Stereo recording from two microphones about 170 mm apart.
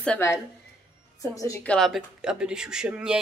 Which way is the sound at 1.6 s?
5° left (ahead or behind).